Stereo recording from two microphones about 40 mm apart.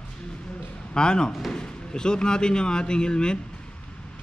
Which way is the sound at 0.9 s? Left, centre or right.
Centre.